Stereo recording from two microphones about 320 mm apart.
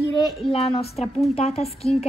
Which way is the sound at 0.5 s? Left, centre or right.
Centre.